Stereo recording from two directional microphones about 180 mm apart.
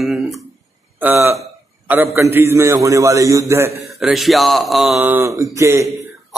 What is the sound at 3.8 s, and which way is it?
A man's voice, centre (ahead or behind).